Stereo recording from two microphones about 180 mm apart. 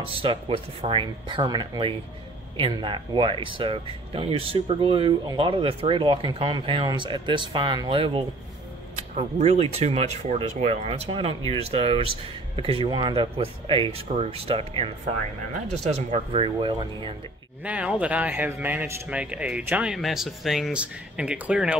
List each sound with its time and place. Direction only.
0.0 s speech: 30° right (ahead or behind)
17.6 s speech: 5° right (ahead or behind)